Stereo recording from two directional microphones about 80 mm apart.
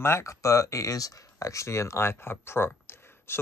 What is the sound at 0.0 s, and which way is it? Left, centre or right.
Speech, left.